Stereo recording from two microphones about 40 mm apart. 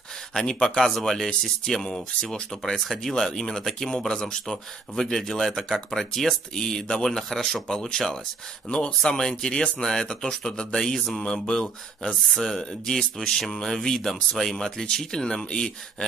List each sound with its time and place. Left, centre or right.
0.3 s speech: centre
8.6 s speech: left